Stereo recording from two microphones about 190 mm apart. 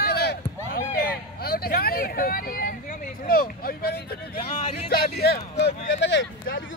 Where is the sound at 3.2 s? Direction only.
50° left (ahead or behind).